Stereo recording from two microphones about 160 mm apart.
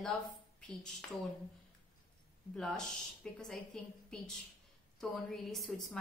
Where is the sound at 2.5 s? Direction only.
Centre (ahead or behind).